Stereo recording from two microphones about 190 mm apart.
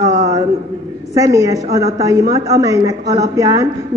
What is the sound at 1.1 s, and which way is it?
A woman's voice, 15° right (ahead or behind).